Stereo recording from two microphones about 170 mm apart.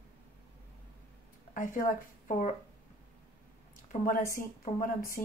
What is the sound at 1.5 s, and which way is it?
Speech, 50° left (ahead or behind).